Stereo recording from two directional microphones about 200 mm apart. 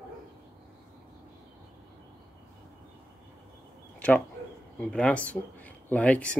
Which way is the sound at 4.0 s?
5° left (ahead or behind).